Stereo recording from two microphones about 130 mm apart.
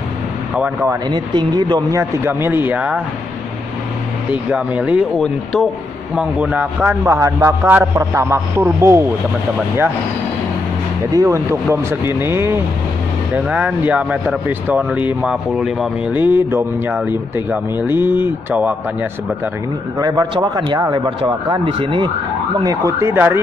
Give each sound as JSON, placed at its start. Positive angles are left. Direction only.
{"t": 1.1, "sound": "speech", "side_deg": -35}
{"t": 4.3, "sound": "speech", "side_deg": -10}
{"t": 6.1, "sound": "speech", "side_deg": -10}
{"t": 11.1, "sound": "speech", "side_deg": -25}
{"t": 16.2, "sound": "speech", "side_deg": -15}
{"t": 20.0, "sound": "speech", "side_deg": -30}
{"t": 22.6, "sound": "speech", "side_deg": -25}